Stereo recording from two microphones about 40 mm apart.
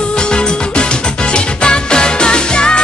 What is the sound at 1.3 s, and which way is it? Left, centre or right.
Music, left.